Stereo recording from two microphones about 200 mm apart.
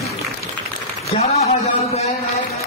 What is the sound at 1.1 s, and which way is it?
Speech, 30° left (ahead or behind).